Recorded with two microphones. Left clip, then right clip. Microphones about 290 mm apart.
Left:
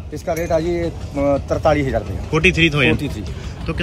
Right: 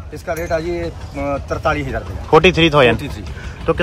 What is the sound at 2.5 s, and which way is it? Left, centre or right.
Speech, centre.